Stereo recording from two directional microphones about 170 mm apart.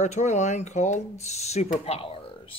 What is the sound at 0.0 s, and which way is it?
Speech, 45° left (ahead or behind).